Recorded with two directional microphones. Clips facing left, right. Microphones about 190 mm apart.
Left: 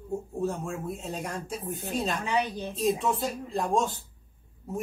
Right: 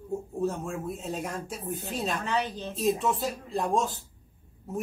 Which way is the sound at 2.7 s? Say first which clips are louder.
Even; centre (ahead or behind).